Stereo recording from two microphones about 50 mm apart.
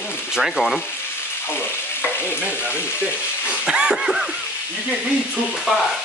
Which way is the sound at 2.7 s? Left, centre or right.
Left.